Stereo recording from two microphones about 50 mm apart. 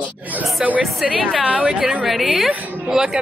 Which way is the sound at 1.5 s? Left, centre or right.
Right.